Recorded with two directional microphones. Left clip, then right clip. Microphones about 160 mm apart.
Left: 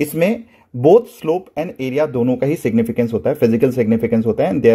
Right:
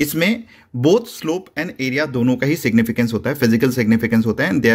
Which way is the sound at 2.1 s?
Centre (ahead or behind).